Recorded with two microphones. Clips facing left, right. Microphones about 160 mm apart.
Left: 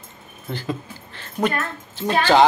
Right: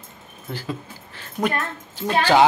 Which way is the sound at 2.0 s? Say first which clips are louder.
Left 1 dB; 10° right (ahead or behind).